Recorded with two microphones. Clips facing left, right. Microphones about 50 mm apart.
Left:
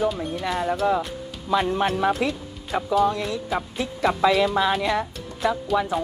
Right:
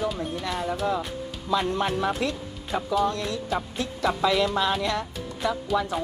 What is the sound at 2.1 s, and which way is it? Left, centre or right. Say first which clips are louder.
Speech: left 3 dB; centre.